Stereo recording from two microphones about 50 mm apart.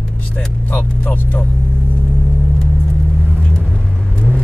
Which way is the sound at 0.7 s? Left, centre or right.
Left.